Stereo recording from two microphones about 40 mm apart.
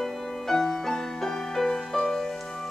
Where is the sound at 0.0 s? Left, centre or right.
Centre.